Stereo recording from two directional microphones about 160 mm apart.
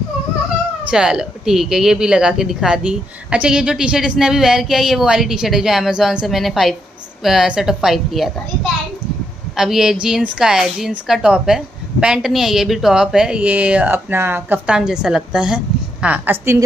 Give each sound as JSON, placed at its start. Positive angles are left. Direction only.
{"t": 0.8, "sound": "a woman's voice", "side_deg": -5}